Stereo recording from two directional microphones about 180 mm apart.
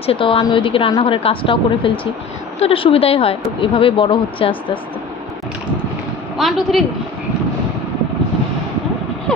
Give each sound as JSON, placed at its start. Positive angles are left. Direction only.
{"t": 0.0, "sound": "a woman's voice", "side_deg": 30}
{"t": 6.3, "sound": "a woman's voice", "side_deg": 0}